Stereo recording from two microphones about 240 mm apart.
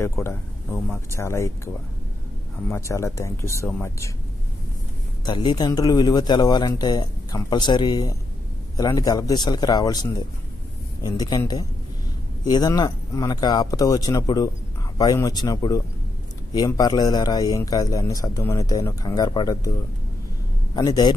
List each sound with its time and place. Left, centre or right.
0.0 s a man's voice: centre
2.7 s a man's voice: centre
5.2 s a man's voice: centre
20.7 s a man's voice: centre